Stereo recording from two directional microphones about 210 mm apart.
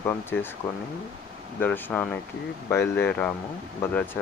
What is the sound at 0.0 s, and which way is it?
Speech, 10° left (ahead or behind).